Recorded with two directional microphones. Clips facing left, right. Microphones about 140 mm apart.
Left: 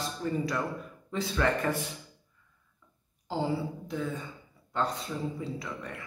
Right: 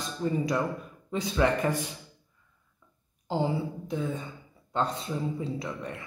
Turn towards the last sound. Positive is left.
turn(degrees=-25)  # may be behind; listen again after turning